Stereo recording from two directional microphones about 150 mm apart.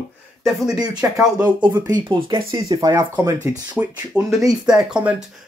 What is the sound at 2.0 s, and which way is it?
Speech, 30° right (ahead or behind).